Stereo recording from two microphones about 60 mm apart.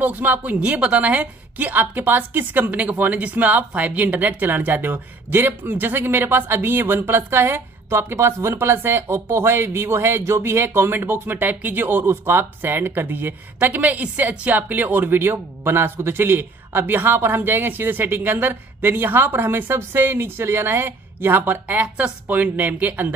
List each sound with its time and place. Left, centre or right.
0.0 s a woman's voice: right